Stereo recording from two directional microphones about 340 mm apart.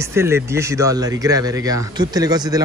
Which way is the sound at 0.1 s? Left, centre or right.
Centre.